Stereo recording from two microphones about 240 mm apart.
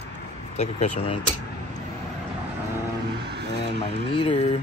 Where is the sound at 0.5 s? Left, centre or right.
Left.